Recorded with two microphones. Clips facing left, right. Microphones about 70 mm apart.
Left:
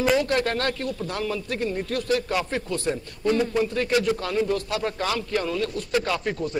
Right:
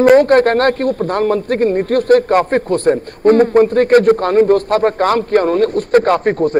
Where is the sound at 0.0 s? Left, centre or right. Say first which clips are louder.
Right 14 dB; right.